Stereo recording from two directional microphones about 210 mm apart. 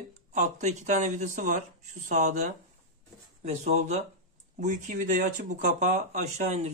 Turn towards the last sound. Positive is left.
turn(degrees=-35)  # may be behind; listen again after turning